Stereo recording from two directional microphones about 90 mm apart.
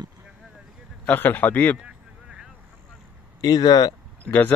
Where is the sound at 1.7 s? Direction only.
10° right (ahead or behind).